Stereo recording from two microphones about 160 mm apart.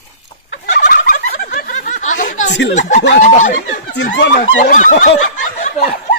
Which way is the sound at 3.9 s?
90° left.